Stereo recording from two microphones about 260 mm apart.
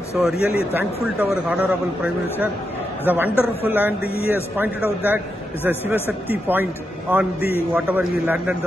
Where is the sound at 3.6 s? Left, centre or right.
Centre.